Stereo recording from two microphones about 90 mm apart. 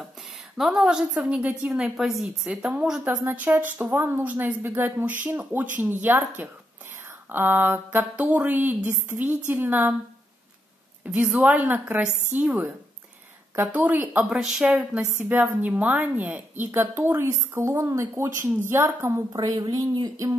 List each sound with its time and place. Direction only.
0.0 s a woman's voice: 5° right (ahead or behind); by 9.9 s 20° right (ahead or behind)
11.1 s a woman's voice: 15° right (ahead or behind)
14.3 s a woman's voice: 5° right (ahead or behind)
14.7 s a woman's voice: 15° right (ahead or behind)
19.3 s speech: 50° right (ahead or behind)